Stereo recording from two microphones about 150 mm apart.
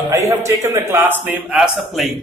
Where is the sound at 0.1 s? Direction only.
15° right (ahead or behind).